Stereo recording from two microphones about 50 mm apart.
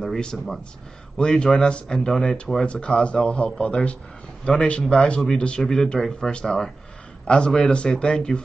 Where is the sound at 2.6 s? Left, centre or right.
Left.